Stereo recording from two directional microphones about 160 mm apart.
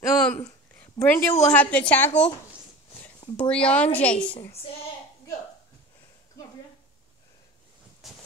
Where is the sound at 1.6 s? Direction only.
10° left (ahead or behind).